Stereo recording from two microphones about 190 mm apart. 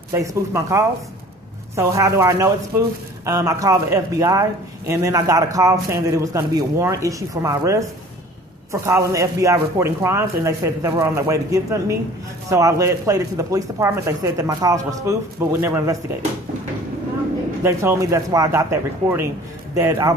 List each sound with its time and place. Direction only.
0.1 s speech: 15° right (ahead or behind)
8.8 s speech: 15° right (ahead or behind)
17.6 s speech: 15° right (ahead or behind)